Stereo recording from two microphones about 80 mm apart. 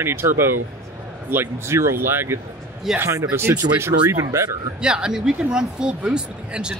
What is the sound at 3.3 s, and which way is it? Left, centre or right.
Speech, right.